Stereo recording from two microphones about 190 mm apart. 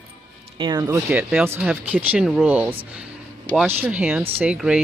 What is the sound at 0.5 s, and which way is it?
Speech, 20° right (ahead or behind).